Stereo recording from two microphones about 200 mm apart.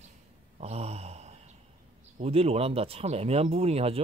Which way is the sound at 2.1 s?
30° right (ahead or behind).